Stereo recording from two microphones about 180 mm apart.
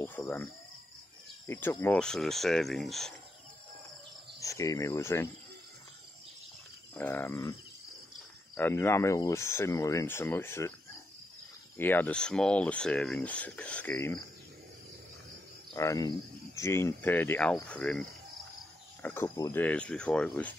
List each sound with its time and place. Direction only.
0.0 s speech: 15° left (ahead or behind)
1.5 s speech: 10° left (ahead or behind)
4.4 s speech: 20° left (ahead or behind)
7.0 s speech: 10° left (ahead or behind)
8.5 s speech: 10° left (ahead or behind)
11.8 s speech: 10° left (ahead or behind)
15.7 s speech: 20° left (ahead or behind)
19.0 s speech: 15° left (ahead or behind)